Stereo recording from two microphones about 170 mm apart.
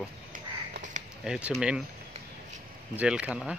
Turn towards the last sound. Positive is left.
turn(degrees=-5)  # may be behind; listen again after turning